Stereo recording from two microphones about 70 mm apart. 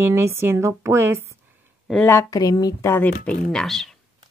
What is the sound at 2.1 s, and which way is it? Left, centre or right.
Speech, left.